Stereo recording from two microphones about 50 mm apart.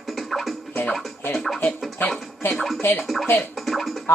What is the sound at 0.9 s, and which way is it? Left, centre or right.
Scratching, centre.